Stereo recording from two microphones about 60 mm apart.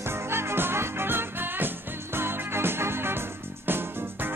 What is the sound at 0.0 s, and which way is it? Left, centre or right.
Music, right.